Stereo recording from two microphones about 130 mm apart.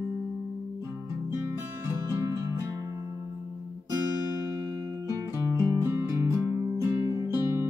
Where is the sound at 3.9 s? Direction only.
25° right (ahead or behind).